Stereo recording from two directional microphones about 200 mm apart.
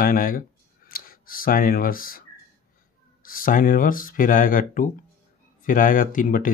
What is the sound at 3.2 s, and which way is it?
Speech, 45° left (ahead or behind).